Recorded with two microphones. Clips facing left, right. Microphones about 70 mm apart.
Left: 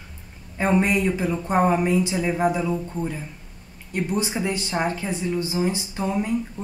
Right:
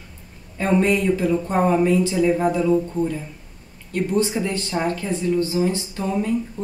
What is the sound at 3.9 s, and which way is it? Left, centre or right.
Speech, centre.